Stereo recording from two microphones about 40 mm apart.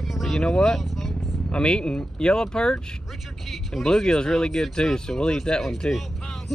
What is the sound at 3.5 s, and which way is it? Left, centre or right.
Speech, centre.